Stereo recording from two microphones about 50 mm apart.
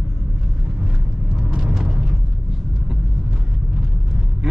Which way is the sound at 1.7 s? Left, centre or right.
Centre.